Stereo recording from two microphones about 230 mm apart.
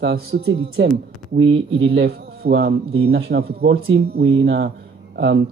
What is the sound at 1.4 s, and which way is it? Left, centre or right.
A man's voice, right.